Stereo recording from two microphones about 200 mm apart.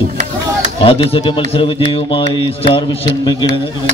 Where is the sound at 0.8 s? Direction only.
25° left (ahead or behind).